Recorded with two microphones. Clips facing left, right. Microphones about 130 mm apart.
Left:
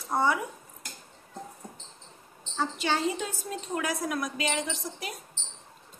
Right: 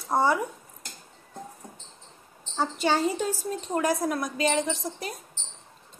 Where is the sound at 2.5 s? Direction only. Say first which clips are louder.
Right 4 dB; 40° right (ahead or behind).